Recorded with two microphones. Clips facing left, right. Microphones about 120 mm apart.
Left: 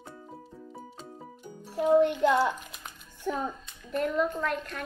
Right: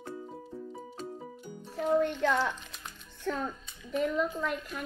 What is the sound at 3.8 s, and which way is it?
Speech, centre (ahead or behind).